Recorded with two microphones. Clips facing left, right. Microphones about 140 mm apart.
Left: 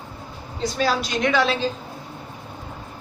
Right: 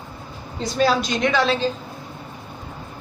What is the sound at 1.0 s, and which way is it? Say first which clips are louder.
Speech: right 1 dB; 10° left (ahead or behind).